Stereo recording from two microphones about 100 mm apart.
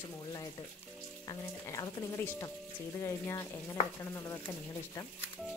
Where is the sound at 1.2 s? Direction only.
40° left (ahead or behind).